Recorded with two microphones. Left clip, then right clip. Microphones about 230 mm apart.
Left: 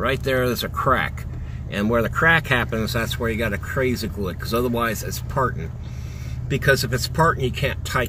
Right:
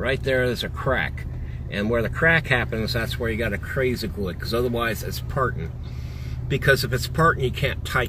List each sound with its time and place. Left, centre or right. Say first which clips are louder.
0.0 s speech: left 1 dB; left
6.5 s speech: left 1 dB; centre